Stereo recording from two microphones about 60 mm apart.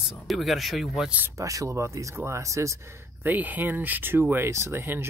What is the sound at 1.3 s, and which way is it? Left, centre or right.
Speech, right.